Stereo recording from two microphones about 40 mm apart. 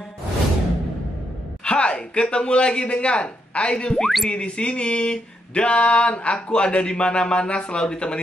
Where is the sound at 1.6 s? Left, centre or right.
Left.